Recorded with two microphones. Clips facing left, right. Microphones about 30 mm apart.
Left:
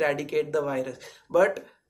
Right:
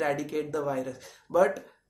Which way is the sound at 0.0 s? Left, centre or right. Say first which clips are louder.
Left 4 dB; left.